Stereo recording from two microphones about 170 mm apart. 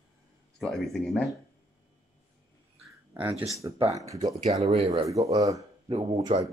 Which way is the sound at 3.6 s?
25° right (ahead or behind).